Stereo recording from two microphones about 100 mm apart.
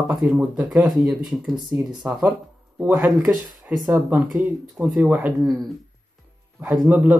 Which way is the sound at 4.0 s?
20° right (ahead or behind).